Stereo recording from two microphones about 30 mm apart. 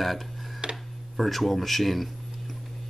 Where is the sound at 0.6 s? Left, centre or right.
Right.